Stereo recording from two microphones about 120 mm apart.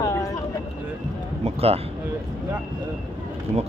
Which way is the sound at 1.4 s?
55° right (ahead or behind).